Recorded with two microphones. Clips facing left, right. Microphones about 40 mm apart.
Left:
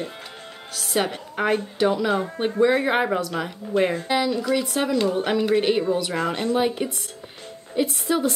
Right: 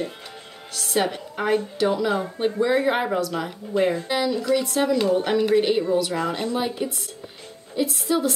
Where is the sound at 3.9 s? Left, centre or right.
Centre.